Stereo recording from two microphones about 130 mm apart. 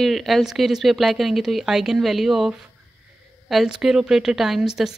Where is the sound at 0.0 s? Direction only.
Centre (ahead or behind).